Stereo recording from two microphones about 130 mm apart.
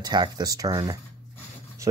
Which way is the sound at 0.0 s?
35° right (ahead or behind).